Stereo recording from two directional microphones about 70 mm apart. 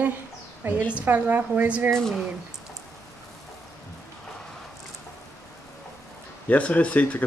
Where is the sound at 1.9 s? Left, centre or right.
Centre.